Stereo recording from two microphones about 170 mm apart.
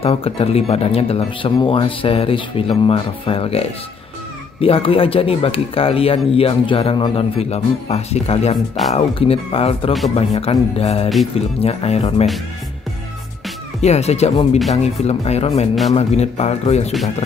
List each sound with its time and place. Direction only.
0.0 s speech: 35° left (ahead or behind)
13.7 s speech: 40° left (ahead or behind)